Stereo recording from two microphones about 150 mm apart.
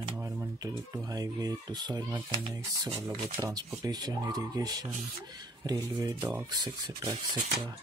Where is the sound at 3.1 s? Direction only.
25° right (ahead or behind).